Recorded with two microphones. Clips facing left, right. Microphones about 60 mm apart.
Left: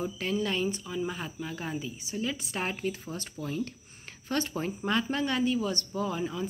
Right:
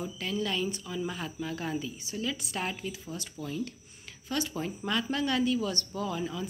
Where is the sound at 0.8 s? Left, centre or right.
Centre.